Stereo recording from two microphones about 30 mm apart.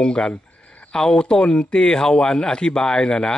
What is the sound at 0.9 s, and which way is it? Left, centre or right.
Speech, left.